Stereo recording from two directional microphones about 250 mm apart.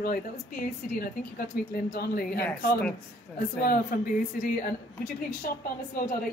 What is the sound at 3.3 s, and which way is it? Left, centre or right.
Speech, centre.